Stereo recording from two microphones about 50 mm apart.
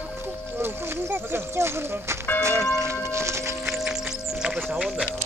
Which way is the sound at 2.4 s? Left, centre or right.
Right.